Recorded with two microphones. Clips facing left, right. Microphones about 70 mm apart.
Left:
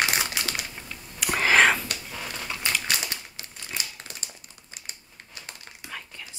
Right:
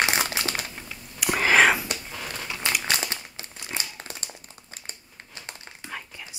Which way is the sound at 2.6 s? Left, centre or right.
Right.